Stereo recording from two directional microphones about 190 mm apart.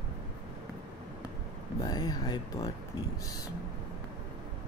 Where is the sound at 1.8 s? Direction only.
20° left (ahead or behind).